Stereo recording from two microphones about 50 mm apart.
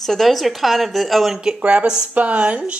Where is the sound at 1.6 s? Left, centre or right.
Right.